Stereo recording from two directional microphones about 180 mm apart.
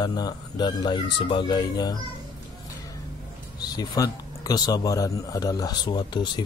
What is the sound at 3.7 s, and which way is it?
Speech, 20° left (ahead or behind).